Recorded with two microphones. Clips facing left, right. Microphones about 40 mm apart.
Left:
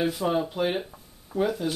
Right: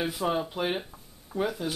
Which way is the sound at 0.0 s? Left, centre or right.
Centre.